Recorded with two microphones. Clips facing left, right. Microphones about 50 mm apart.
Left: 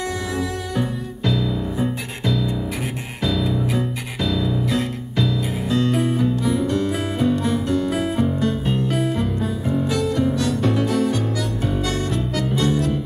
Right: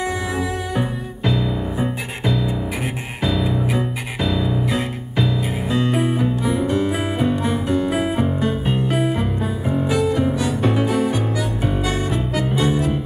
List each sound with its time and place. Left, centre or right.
0.4 s music: centre